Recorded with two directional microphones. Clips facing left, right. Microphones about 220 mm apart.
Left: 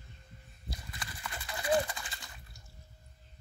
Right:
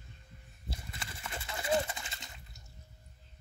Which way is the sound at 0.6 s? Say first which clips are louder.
Even; 25° right (ahead or behind).